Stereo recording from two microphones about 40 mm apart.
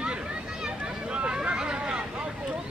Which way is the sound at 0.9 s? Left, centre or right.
Right.